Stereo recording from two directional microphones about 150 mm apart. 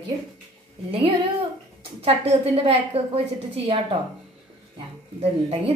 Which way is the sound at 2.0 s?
40° right (ahead or behind).